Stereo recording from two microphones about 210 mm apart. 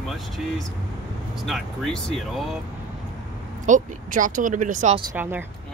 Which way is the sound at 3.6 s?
35° right (ahead or behind).